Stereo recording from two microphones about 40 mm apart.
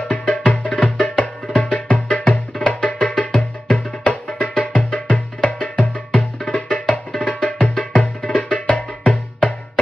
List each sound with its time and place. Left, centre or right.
0.1 s music: left